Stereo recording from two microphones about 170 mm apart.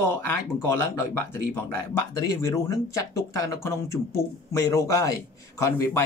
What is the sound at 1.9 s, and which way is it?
Speech, 20° left (ahead or behind).